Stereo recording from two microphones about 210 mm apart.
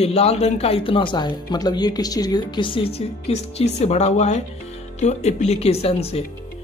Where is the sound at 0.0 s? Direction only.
30° left (ahead or behind).